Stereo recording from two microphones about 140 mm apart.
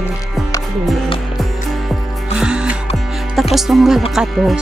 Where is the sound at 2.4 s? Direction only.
5° right (ahead or behind).